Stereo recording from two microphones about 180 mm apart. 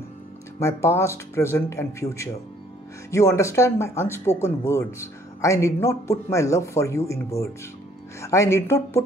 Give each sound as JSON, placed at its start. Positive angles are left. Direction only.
{"t": 0.6, "sound": "speech", "side_deg": 15}